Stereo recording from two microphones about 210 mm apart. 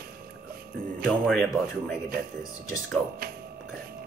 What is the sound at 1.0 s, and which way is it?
Speech, centre (ahead or behind).